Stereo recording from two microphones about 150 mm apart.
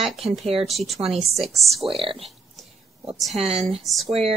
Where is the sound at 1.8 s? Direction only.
35° right (ahead or behind).